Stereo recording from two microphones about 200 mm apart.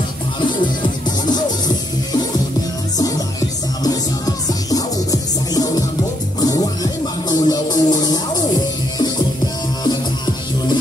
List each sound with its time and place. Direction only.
3.0 s music: 20° left (ahead or behind)
9.8 s music: 20° left (ahead or behind)